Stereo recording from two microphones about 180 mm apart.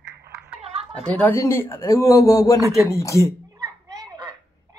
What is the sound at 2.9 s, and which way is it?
Speech, 15° left (ahead or behind).